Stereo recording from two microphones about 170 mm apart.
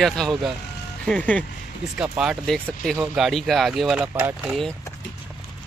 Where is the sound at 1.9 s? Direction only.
5° right (ahead or behind).